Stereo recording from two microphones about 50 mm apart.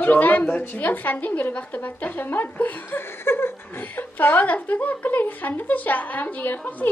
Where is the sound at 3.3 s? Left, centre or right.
Left.